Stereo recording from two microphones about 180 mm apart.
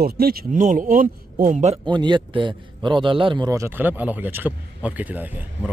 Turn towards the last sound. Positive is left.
turn(degrees=-10)  # may be behind; listen again after turning